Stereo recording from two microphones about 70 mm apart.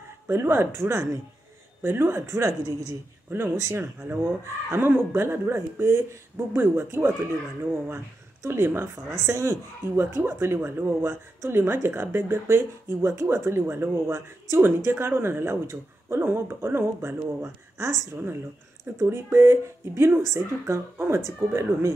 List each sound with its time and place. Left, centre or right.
0.3 s speech: right
8.5 s speech: right
19.0 s speech: right